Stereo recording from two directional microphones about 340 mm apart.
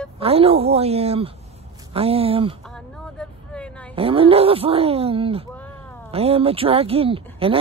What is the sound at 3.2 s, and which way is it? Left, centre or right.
Vehicle, centre.